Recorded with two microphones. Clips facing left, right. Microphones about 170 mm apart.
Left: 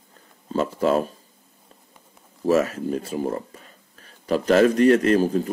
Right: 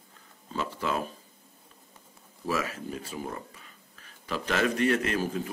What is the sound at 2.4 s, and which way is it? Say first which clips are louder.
Speech: left 11 dB; 40° left (ahead or behind).